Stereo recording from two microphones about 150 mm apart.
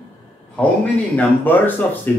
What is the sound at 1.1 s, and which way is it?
Speech, 10° left (ahead or behind).